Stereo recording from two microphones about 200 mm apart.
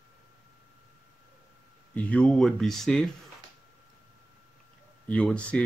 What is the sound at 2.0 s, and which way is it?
Speech, 5° left (ahead or behind).